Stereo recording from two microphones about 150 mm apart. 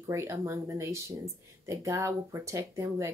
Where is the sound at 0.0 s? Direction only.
20° right (ahead or behind).